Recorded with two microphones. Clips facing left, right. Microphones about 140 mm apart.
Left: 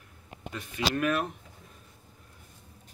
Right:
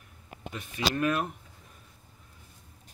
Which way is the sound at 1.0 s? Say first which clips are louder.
Even; 25° right (ahead or behind).